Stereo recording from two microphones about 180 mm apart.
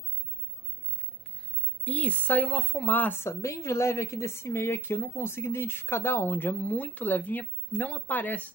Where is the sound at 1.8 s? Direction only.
10° left (ahead or behind).